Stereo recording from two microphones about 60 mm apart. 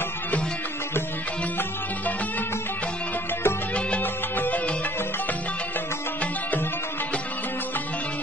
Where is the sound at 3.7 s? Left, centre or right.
Centre.